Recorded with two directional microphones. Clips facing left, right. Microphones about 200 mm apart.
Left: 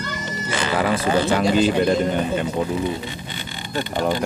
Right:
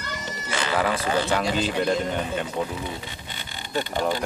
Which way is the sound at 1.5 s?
5° left (ahead or behind).